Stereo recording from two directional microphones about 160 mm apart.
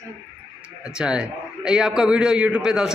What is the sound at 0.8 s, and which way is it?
A man's voice, 5° right (ahead or behind).